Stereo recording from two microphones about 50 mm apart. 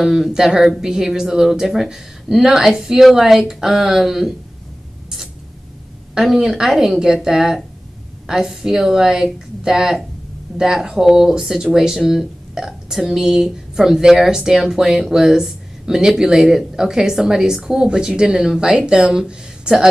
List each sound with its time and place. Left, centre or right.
0.0 s speech: centre
6.1 s speech: centre